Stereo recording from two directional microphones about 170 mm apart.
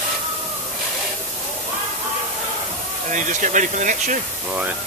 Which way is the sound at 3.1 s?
45° right (ahead or behind).